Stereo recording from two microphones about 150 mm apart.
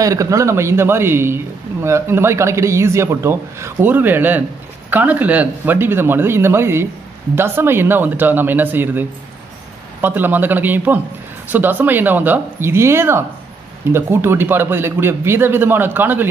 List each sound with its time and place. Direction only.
0.0 s a man's voice: 20° right (ahead or behind)
10.0 s a man's voice: 15° right (ahead or behind)